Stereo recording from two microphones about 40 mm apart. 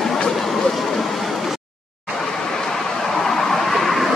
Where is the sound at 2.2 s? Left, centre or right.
Centre.